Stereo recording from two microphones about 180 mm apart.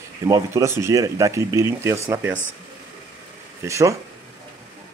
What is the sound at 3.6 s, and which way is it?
Speech, 15° right (ahead or behind).